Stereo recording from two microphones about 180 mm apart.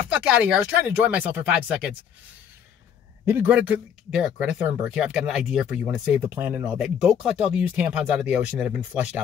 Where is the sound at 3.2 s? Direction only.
10° right (ahead or behind).